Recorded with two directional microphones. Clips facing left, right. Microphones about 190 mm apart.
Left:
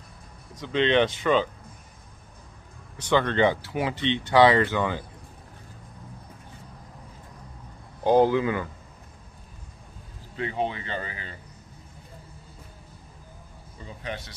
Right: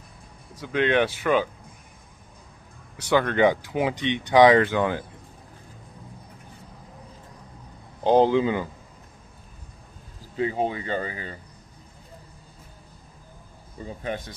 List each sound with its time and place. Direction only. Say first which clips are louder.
0.6 s speech: even; 10° right (ahead or behind)
3.0 s speech: right 2 dB; 10° right (ahead or behind)
8.0 s speech: right 1 dB; 20° right (ahead or behind)
10.3 s speech: right 3 dB; 35° right (ahead or behind)
13.7 s speech: right 5 dB; 45° right (ahead or behind)